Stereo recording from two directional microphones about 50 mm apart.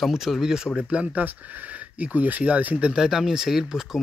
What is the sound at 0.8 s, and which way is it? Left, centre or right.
Speech, right.